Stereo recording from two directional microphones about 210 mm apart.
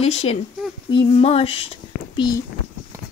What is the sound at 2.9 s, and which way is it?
Run, 15° right (ahead or behind).